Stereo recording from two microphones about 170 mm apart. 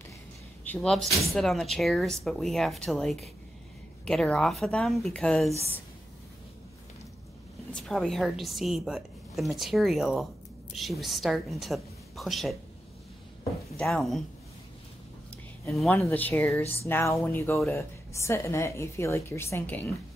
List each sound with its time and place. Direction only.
0.7 s speech: 5° left (ahead or behind)
7.7 s a woman's voice: centre (ahead or behind)
13.7 s speech: 5° left (ahead or behind)
15.9 s a woman's voice: 10° left (ahead or behind)